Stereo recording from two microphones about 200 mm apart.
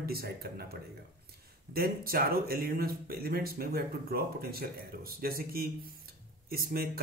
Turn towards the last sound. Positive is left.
turn(degrees=-50)  # may be behind; listen again after turning